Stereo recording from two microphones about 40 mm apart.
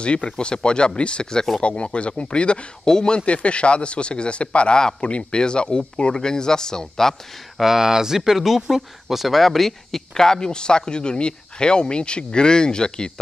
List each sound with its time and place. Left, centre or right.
0.0 s speech: left
3.3 s speech: left; by 7.2 s centre
7.5 s speech: centre; by 13.1 s left